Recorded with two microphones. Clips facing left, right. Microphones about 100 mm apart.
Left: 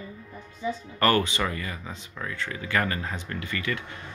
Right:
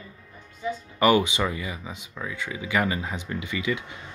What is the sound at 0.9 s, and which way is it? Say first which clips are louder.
Speech: right 3 dB; 15° right (ahead or behind).